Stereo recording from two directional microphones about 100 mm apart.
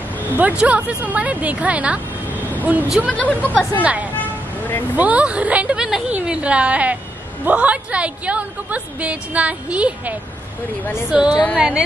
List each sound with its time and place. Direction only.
0.4 s a woman's voice: 15° right (ahead or behind)
3.1 s speech: 15° left (ahead or behind)
3.8 s a woman's voice: 15° right (ahead or behind)
4.2 s vehicle: 20° left (ahead or behind)
4.9 s speech: 15° right (ahead or behind)
6.1 s a sound: 10° right (ahead or behind)
7.4 s a woman's voice: 15° right (ahead or behind)